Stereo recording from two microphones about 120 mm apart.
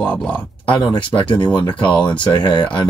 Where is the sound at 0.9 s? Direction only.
45° left (ahead or behind).